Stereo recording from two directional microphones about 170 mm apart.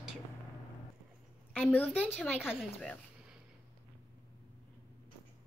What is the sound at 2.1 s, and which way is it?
Speech, 5° right (ahead or behind).